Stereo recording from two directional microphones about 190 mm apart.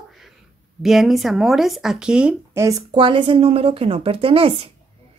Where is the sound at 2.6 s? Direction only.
25° right (ahead or behind).